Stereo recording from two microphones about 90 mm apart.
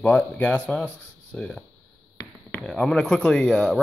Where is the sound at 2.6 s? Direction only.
5° left (ahead or behind).